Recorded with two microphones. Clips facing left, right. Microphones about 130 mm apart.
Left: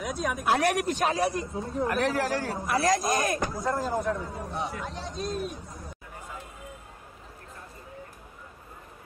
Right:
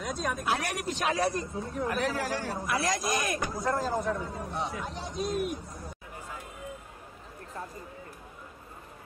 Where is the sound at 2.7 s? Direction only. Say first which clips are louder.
Left 5 dB; 40° left (ahead or behind).